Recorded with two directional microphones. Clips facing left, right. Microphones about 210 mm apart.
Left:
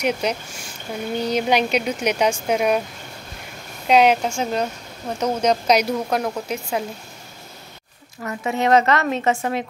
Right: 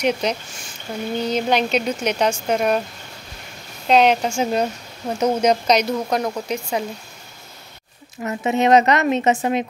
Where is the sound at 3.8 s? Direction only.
10° left (ahead or behind).